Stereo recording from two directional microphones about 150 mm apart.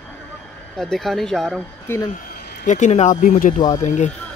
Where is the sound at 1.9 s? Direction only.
15° left (ahead or behind).